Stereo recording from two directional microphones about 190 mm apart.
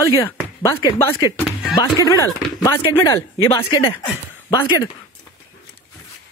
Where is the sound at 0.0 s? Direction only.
15° left (ahead or behind).